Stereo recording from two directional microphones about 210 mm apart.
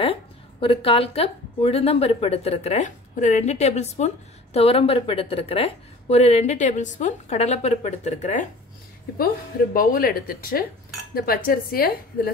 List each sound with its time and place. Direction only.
0.0 s speech: 25° left (ahead or behind)
9.8 s speech: 45° left (ahead or behind)